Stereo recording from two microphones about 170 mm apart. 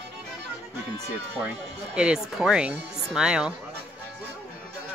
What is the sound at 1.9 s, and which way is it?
Speech, 5° right (ahead or behind).